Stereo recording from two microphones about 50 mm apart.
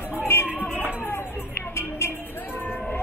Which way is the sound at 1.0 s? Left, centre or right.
Left.